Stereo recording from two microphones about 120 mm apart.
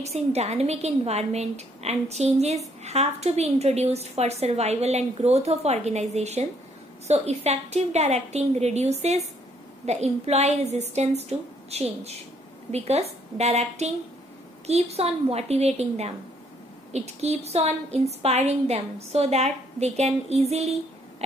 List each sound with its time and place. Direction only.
0.0 s a woman's voice: 60° right (ahead or behind)